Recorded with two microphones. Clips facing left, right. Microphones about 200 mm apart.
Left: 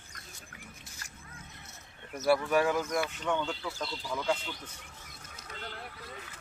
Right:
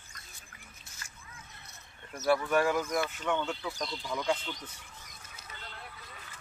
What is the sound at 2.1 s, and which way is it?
Speech, centre (ahead or behind).